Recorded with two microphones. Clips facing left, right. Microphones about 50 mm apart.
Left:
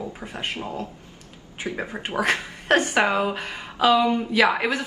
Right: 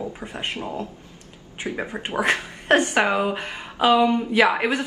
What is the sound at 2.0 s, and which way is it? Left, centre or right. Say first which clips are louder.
Speech: right 1 dB; right.